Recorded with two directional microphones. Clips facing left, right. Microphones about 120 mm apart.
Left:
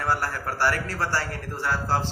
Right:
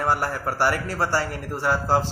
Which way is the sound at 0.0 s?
15° right (ahead or behind).